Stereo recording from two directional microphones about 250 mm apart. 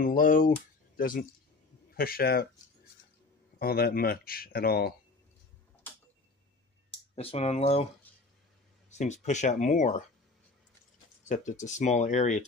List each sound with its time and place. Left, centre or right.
0.0 s speech: left
3.5 s speech: left
7.2 s speech: left
8.9 s speech: left
11.2 s speech: left